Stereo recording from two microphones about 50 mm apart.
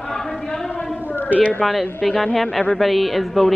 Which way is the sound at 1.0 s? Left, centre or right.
Left.